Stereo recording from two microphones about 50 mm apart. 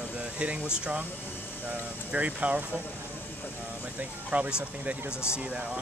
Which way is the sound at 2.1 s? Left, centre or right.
Right.